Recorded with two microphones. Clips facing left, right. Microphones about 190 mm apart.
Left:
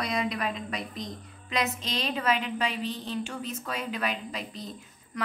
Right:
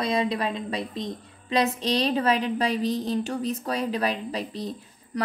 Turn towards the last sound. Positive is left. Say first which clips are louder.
# right 6 dB
turn(degrees=-35)  # may be behind; listen again after turning